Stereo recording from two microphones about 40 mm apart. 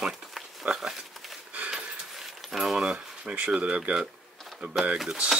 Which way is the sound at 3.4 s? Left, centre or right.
Right.